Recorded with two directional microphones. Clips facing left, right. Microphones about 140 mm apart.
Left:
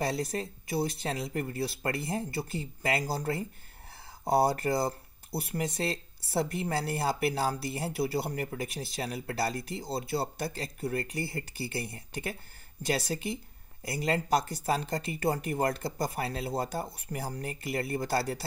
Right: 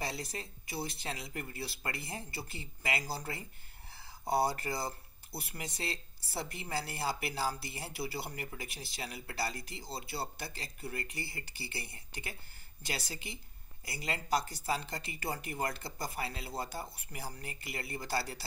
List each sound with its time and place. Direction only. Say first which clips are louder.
0.0 s speech: left 9 dB; 50° left (ahead or behind)